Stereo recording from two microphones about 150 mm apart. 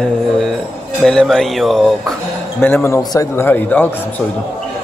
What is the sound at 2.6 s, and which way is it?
A man's voice, 15° left (ahead or behind).